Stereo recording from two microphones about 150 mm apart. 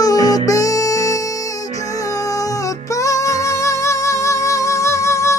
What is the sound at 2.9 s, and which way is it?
Music, 20° left (ahead or behind).